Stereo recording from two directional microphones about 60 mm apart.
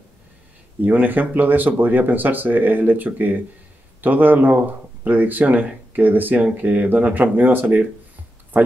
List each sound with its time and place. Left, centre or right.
0.7 s speech: right